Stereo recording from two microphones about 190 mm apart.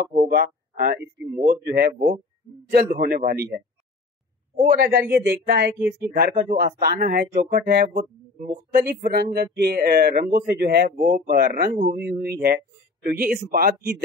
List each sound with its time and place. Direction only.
0.2 s speech: 55° right (ahead or behind)